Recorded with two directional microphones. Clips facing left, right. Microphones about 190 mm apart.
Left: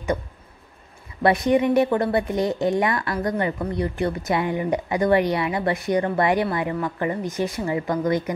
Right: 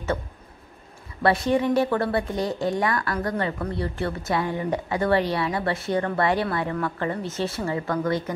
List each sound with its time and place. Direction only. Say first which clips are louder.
1.2 s a woman's voice: left 3 dB; 15° left (ahead or behind)